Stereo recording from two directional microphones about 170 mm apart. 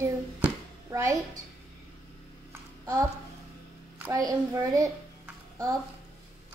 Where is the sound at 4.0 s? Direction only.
20° right (ahead or behind).